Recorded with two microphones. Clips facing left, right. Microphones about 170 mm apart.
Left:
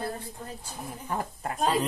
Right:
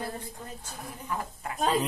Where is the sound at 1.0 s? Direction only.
40° left (ahead or behind).